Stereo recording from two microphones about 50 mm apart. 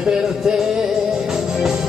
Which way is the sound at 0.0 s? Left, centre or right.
Centre.